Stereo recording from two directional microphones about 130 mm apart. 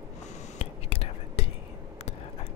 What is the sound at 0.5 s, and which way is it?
Whispering, 50° left (ahead or behind).